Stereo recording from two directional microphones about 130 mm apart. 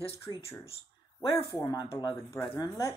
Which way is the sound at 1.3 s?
25° left (ahead or behind).